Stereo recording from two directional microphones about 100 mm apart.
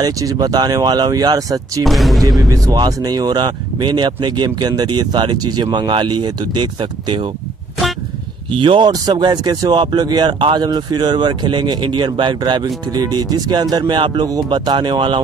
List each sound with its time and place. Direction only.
0.0 s speech: 40° right (ahead or behind)
1.9 s speech: centre (ahead or behind)
2.2 s speech: 40° right (ahead or behind)
8.5 s speech: 60° right (ahead or behind)
9.1 s speech: 45° right (ahead or behind)
12.4 s speech: 45° right (ahead or behind)
14.2 s speech: 40° right (ahead or behind)